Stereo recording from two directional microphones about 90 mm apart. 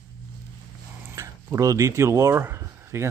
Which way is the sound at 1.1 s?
35° right (ahead or behind).